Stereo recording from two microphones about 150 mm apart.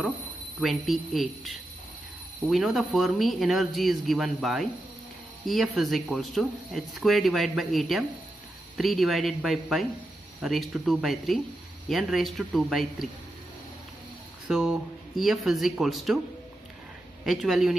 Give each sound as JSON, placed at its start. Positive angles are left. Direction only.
{"t": 0.6, "sound": "speech", "side_deg": 0}
{"t": 14.5, "sound": "speech", "side_deg": -5}
{"t": 17.2, "sound": "speech", "side_deg": 0}